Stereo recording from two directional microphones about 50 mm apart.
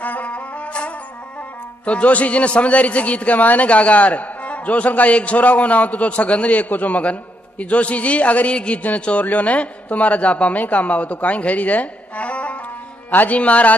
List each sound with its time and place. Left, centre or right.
0.0 s music: left
1.9 s a man's voice: left